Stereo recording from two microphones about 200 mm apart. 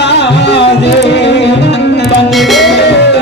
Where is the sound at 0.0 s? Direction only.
60° left (ahead or behind).